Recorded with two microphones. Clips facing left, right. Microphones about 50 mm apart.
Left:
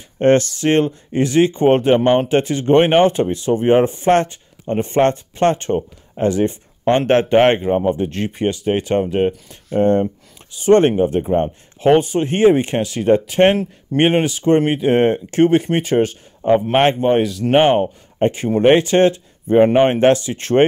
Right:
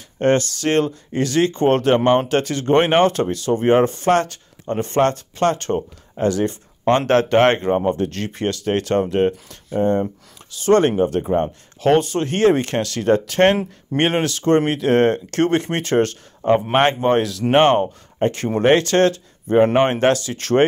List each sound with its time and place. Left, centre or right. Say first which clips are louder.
0.2 s speech: left 4 dB; left
7.6 s speech: left 1 dB; centre
7.9 s speech: left 2 dB; centre
9.7 s speech: left 4 dB; left
10.5 s speech: left 3 dB; left
18.2 s speech: left 3 dB; left
18.6 s speech: left 3 dB; centre
19.5 s speech: left 2 dB; centre
19.8 s speech: left 3 dB; left